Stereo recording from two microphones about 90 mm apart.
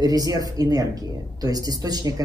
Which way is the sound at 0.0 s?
45° right (ahead or behind).